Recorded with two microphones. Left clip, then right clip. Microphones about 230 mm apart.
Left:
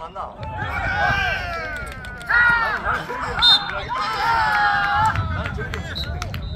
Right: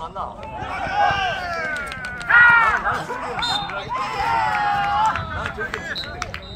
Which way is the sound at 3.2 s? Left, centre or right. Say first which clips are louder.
Left 11 dB; centre.